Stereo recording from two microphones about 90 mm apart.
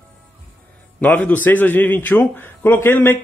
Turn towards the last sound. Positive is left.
turn(degrees=25)  # may be behind; listen again after turning